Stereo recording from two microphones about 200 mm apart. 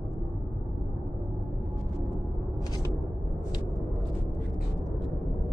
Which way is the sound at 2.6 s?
20° left (ahead or behind).